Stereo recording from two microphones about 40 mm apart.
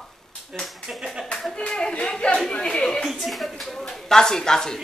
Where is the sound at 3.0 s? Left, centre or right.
Centre.